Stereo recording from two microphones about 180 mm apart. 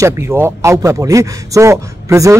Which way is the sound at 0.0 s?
15° right (ahead or behind).